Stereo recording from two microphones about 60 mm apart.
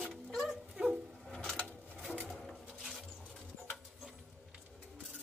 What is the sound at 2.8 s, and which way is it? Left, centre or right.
Rodents, centre.